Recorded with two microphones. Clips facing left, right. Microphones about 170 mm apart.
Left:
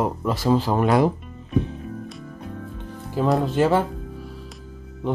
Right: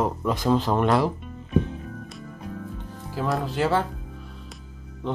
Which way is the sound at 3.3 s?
20° left (ahead or behind).